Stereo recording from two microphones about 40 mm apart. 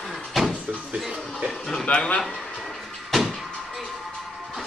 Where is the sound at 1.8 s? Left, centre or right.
Left.